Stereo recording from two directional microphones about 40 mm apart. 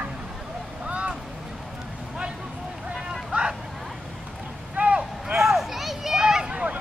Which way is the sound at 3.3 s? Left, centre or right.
Right.